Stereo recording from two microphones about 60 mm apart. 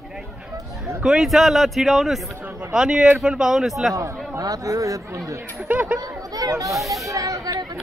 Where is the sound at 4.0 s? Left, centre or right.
Right.